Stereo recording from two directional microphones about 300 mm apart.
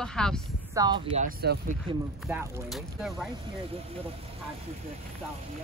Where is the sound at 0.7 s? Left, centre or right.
Centre.